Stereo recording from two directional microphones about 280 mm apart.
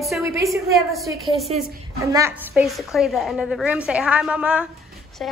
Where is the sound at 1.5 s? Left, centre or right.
Right.